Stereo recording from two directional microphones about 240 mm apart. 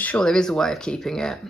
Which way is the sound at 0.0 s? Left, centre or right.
Centre.